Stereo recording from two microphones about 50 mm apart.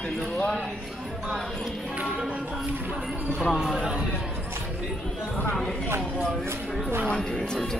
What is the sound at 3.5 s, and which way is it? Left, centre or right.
Speech, centre.